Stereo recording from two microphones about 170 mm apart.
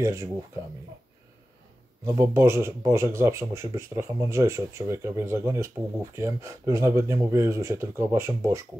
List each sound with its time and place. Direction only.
0.0 s speech: 15° right (ahead or behind)
2.0 s speech: 15° right (ahead or behind)